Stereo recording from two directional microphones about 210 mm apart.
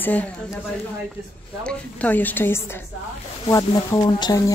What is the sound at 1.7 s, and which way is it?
Speech, 5° left (ahead or behind).